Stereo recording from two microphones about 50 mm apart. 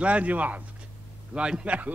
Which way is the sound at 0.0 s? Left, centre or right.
Right.